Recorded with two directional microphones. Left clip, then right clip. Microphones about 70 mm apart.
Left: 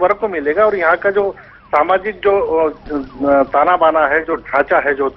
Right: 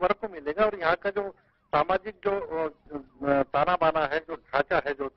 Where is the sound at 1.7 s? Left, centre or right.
Left.